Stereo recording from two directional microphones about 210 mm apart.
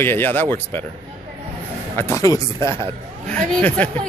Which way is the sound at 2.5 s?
25° right (ahead or behind).